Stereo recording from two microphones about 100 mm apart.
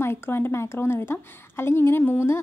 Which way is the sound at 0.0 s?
25° left (ahead or behind).